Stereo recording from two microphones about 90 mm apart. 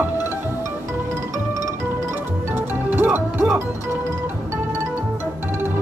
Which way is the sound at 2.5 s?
20° right (ahead or behind).